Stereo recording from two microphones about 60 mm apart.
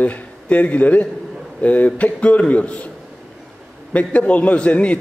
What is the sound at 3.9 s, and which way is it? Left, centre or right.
A man's voice, left.